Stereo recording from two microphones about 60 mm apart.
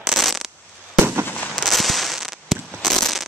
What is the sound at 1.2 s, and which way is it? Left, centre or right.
Fireworks, left.